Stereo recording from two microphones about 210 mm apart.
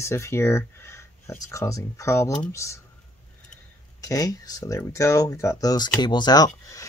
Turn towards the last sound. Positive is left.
turn(degrees=15)  # may be behind; listen again after turning